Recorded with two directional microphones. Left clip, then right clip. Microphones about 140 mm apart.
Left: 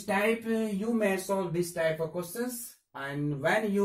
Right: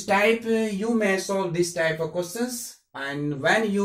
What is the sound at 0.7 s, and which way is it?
Speech, 35° left (ahead or behind).